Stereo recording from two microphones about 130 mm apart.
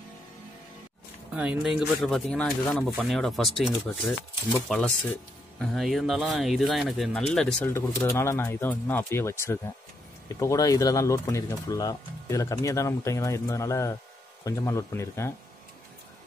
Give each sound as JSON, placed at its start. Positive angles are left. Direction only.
{"t": 1.3, "sound": "speech", "side_deg": -10}
{"t": 7.6, "sound": "speech", "side_deg": 20}